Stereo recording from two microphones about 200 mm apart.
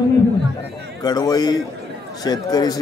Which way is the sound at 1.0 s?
20° left (ahead or behind).